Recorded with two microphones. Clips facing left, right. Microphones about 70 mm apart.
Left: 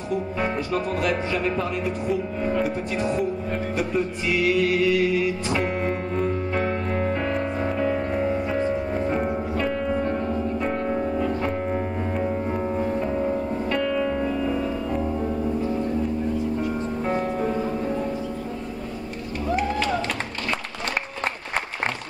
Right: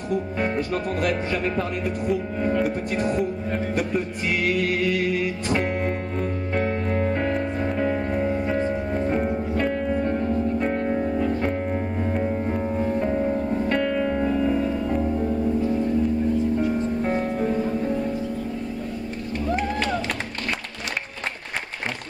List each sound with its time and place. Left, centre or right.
1.9 s speech: centre
4.3 s mantra: right
5.5 s music: centre
7.3 s music: centre
11.0 s music: centre
13.8 s music: right
17.0 s music: centre
17.4 s music: left